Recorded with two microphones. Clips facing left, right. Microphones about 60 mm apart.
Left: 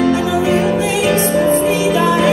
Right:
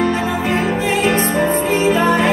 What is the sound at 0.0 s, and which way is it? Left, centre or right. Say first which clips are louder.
Music: left 3 dB; right.